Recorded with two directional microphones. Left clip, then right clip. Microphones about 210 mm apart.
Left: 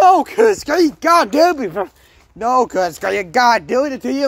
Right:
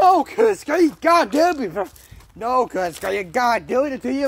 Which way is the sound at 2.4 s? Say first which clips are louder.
Left 5 dB; 50° left (ahead or behind).